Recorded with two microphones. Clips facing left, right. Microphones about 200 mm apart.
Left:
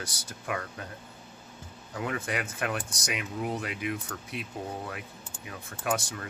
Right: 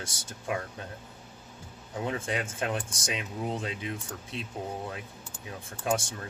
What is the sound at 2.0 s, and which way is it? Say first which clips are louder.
Speech: right 1 dB; 25° right (ahead or behind).